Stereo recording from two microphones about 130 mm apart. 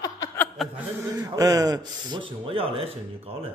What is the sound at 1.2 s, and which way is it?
Speech, 30° right (ahead or behind).